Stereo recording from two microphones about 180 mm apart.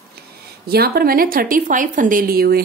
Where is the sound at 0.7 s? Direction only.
60° right (ahead or behind).